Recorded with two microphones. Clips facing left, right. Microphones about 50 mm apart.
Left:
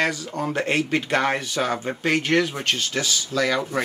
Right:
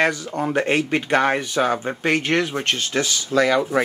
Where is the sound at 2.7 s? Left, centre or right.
Right.